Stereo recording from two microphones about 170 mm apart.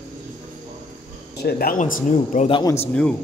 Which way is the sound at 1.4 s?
65° left (ahead or behind).